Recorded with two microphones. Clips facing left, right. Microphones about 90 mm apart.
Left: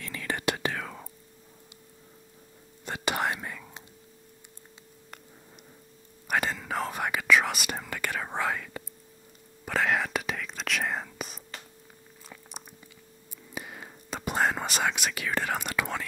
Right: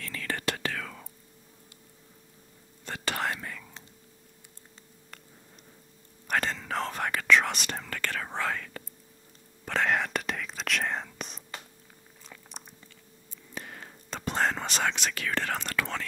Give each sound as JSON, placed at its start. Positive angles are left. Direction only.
{"t": 0.0, "sound": "whispering", "side_deg": 15}
{"t": 2.8, "sound": "whispering", "side_deg": 15}
{"t": 6.2, "sound": "whispering", "side_deg": 10}
{"t": 12.3, "sound": "biting", "side_deg": 10}
{"t": 13.6, "sound": "whispering", "side_deg": 10}